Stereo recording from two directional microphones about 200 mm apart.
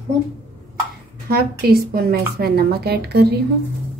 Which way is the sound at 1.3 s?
50° right (ahead or behind).